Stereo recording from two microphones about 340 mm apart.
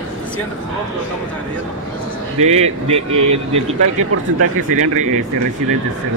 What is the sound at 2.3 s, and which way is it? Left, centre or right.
A man's voice, centre.